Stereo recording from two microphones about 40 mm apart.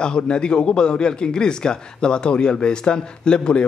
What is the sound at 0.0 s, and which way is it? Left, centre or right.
A man's voice, left.